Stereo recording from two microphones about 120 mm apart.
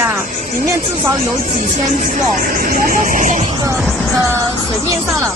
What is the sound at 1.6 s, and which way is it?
Music, 90° right.